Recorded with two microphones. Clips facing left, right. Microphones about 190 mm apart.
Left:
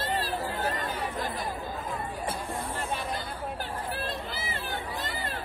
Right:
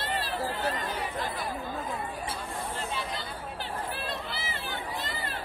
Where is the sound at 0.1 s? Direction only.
45° left (ahead or behind).